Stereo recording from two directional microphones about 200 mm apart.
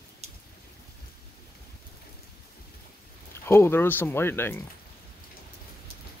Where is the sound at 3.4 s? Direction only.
10° left (ahead or behind).